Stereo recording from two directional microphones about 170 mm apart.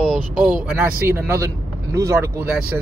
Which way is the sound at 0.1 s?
10° right (ahead or behind).